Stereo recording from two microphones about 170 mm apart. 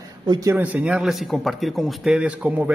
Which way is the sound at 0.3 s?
20° right (ahead or behind).